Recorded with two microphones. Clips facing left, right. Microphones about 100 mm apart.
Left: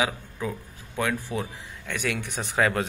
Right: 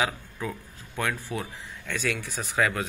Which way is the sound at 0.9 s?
25° left (ahead or behind).